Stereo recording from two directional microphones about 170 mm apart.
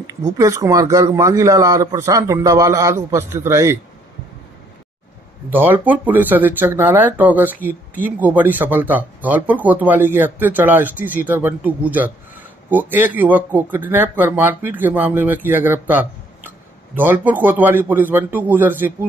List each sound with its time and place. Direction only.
0.0 s speech: 20° right (ahead or behind)
5.5 s speech: 10° right (ahead or behind)